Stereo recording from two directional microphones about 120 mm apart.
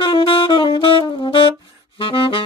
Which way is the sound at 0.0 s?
50° left (ahead or behind).